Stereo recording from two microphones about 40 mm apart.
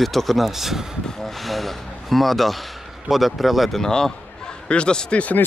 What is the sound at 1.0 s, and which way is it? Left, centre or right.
Speech, centre.